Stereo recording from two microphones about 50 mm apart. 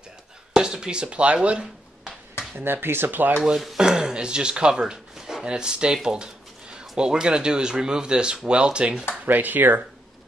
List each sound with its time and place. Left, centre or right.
0.5 s speech: centre
2.6 s speech: right
3.4 s speech: centre
9.2 s speech: right